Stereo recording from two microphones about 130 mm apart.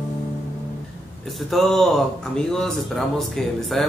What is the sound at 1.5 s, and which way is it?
Speech, centre (ahead or behind).